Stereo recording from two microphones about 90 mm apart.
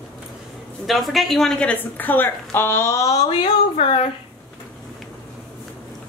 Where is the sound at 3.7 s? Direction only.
90° left.